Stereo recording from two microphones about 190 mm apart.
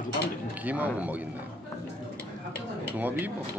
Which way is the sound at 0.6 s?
10° right (ahead or behind).